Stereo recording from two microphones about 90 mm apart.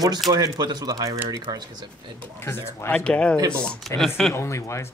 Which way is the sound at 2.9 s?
10° left (ahead or behind).